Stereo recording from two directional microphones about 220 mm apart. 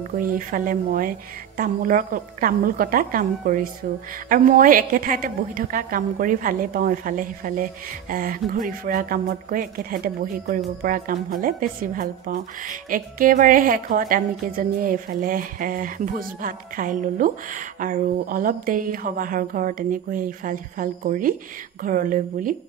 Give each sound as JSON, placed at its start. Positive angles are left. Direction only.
{"t": 0.2, "sound": "speech", "side_deg": -40}